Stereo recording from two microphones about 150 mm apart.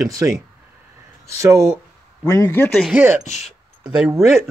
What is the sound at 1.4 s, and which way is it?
Speech, 20° right (ahead or behind).